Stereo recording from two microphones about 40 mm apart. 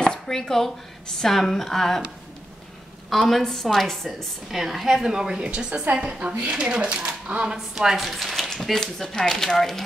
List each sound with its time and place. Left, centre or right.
0.0 s a sound: left
0.5 s a woman's voice: centre
3.1 s a woman's voice: centre
4.5 s a woman's voice: centre
5.4 s speech: right
7.5 s a woman's voice: centre
8.4 s a sound: centre
8.7 s a woman's voice: centre